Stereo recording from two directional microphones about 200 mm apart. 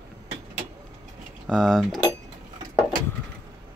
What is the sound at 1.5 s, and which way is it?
Speech, centre (ahead or behind).